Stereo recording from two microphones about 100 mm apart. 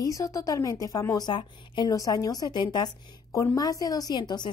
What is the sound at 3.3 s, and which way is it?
Speech, 25° left (ahead or behind).